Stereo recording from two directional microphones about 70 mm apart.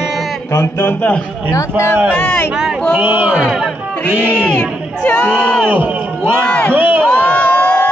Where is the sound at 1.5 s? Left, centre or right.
Left.